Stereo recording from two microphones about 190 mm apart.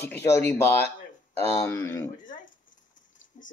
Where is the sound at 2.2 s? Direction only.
45° left (ahead or behind).